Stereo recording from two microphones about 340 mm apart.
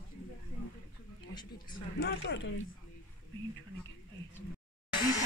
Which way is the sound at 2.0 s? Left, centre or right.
Left.